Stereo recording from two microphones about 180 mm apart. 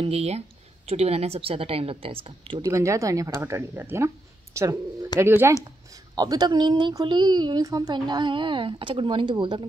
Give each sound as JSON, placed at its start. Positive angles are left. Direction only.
{"t": 0.0, "sound": "a woman's voice", "side_deg": -35}